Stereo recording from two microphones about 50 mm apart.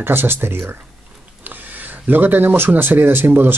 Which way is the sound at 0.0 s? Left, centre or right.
Right.